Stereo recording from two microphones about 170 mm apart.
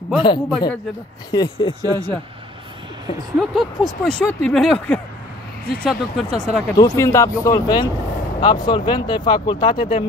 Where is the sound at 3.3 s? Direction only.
Centre (ahead or behind).